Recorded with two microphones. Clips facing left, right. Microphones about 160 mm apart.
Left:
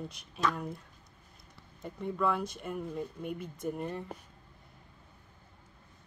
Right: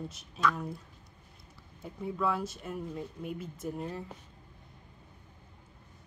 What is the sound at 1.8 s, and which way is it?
Speech, 5° right (ahead or behind).